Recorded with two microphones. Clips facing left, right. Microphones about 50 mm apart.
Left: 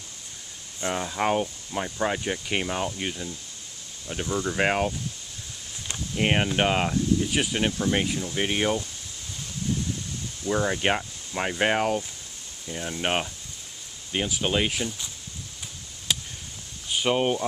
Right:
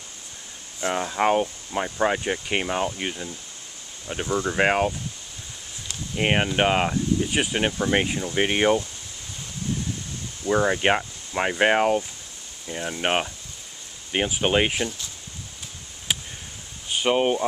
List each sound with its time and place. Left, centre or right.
0.7 s speech: centre
6.1 s speech: centre
10.4 s speech: centre
14.1 s speech: right
16.9 s speech: centre